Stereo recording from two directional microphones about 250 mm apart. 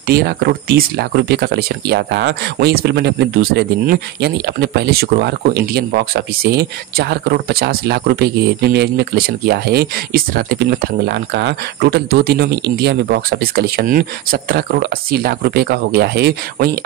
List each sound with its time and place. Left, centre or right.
0.0 s speech: right